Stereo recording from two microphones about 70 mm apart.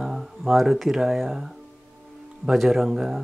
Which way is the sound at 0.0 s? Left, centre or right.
Centre.